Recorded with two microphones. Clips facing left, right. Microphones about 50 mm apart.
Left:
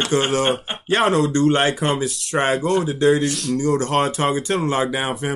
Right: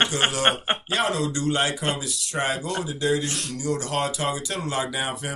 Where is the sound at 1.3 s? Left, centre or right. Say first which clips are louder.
Left 7 dB; left.